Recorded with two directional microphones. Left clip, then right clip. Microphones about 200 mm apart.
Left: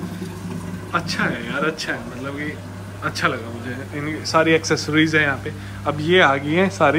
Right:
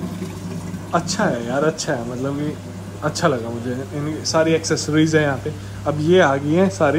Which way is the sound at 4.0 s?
10° right (ahead or behind).